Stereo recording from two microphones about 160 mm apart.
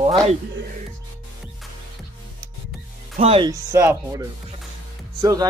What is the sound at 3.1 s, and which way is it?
Speech, 40° right (ahead or behind).